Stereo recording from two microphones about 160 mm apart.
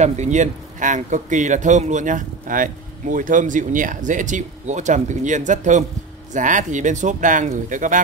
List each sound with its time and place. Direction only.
0.0 s a man's voice: 45° right (ahead or behind)